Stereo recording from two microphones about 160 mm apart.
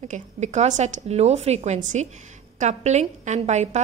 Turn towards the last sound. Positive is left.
turn(degrees=-45)  # may be behind; listen again after turning